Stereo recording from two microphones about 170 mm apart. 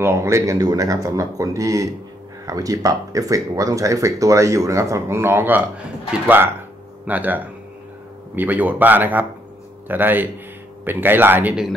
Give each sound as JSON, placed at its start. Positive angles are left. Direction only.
{"t": 0.0, "sound": "speech", "side_deg": -15}